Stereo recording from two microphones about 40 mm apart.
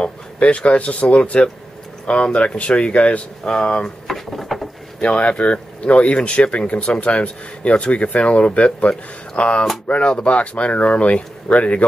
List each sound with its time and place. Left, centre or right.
0.0 s speech: left
4.1 s drawer open or close: centre
5.0 s speech: left